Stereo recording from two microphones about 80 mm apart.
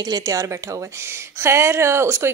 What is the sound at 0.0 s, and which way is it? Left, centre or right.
Speech, right.